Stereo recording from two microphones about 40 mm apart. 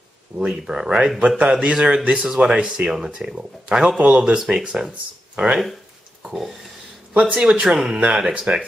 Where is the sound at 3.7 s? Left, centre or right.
Right.